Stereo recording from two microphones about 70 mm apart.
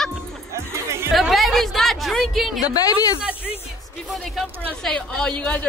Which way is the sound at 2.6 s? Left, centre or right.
Left.